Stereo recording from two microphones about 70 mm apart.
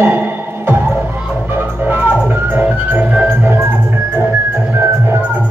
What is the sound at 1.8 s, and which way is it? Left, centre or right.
Music, right.